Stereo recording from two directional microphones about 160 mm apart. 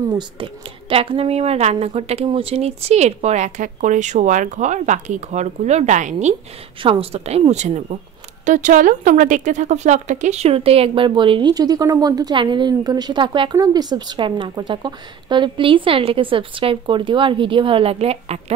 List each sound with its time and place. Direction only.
0.4 s a woman's voice: 30° right (ahead or behind); by 6.3 s 45° right (ahead or behind)
6.8 s speech: 35° right (ahead or behind)